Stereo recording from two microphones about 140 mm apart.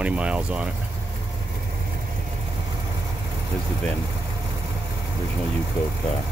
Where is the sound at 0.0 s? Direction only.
10° right (ahead or behind).